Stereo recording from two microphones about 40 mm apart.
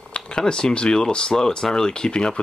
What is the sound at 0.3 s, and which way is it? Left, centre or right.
Speech, left.